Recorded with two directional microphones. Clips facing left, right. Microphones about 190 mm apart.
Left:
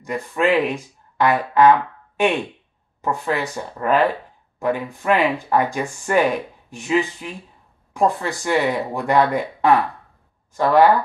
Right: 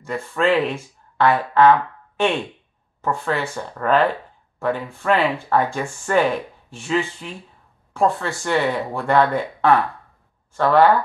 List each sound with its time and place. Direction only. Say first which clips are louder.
0.0 s speech: even; 15° left (ahead or behind)